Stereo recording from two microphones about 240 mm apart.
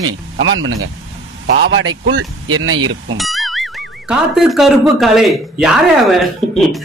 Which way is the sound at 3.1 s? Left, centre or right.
Centre.